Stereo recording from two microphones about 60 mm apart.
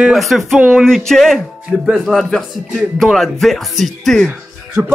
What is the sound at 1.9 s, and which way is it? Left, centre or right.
A man's voice, centre.